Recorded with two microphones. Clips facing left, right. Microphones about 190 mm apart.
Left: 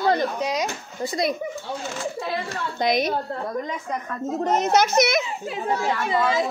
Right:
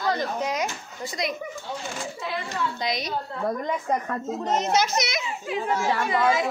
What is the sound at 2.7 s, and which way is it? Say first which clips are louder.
Speech: left 7 dB; 55° left (ahead or behind).